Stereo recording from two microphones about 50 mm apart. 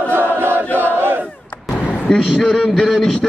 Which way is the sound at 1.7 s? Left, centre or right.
Left.